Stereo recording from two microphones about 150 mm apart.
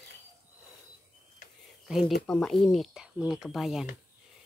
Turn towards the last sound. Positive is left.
turn(degrees=0)  # may be behind; listen again after turning